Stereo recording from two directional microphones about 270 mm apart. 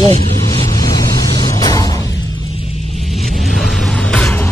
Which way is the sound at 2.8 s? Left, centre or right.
Centre.